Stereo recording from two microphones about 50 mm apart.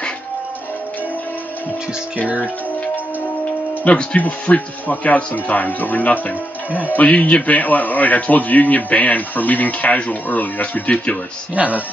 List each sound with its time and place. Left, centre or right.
3.8 s speech: left
4.2 s a man's voice: left
6.7 s speech: right
7.0 s a man's voice: left
11.5 s speech: right